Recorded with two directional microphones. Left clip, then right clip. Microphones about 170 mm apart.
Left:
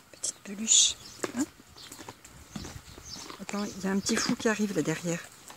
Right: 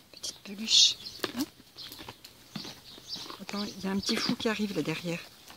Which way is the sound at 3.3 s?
15° left (ahead or behind).